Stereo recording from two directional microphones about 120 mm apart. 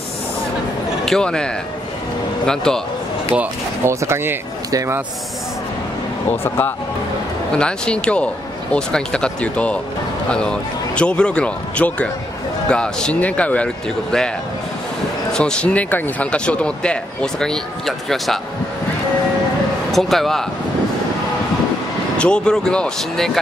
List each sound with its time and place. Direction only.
1.0 s a man's voice: 5° left (ahead or behind)
3.3 s speech: 20° right (ahead or behind)
6.4 s speech: 20° left (ahead or behind)
7.5 s speech: 10° left (ahead or behind)
15.3 s speech: 5° left (ahead or behind)
19.9 s a man's voice: centre (ahead or behind)
22.1 s speech: 10° left (ahead or behind)